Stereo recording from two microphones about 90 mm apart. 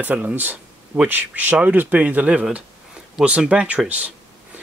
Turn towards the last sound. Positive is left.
turn(degrees=-15)  # may be behind; listen again after turning